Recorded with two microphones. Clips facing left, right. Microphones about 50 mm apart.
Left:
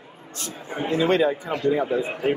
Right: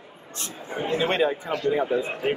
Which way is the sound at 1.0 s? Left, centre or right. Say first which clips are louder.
Left 4 dB; right.